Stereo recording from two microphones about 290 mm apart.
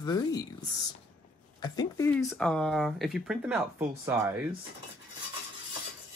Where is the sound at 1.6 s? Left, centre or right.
Centre.